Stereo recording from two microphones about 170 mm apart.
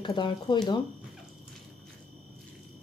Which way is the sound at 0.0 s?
25° left (ahead or behind).